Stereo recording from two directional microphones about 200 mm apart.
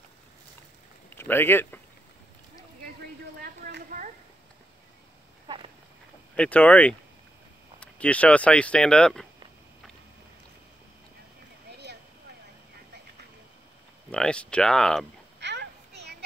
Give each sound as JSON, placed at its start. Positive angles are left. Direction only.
{"t": 1.1, "sound": "speech", "side_deg": 10}
{"t": 3.4, "sound": "a sound", "side_deg": -45}
{"t": 6.3, "sound": "speech", "side_deg": 5}
{"t": 11.7, "sound": "a sound", "side_deg": -55}
{"t": 14.1, "sound": "speech", "side_deg": 5}
{"t": 15.4, "sound": "children playing", "side_deg": -55}